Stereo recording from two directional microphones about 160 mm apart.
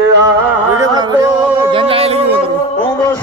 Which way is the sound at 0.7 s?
25° right (ahead or behind).